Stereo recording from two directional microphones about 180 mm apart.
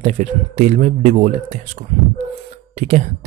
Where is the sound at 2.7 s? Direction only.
40° right (ahead or behind).